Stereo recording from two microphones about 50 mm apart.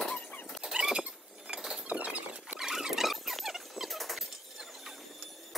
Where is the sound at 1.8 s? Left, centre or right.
Right.